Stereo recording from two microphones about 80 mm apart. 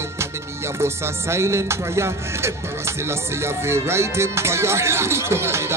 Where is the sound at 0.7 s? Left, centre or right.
Right.